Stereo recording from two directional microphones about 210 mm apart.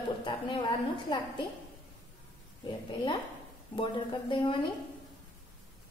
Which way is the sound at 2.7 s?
20° left (ahead or behind).